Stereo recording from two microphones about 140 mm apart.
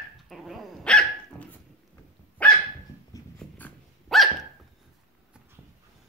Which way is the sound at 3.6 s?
10° left (ahead or behind).